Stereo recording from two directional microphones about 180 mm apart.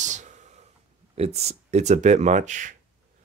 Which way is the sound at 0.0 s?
40° right (ahead or behind).